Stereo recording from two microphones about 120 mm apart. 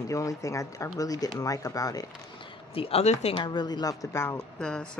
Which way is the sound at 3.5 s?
35° left (ahead or behind).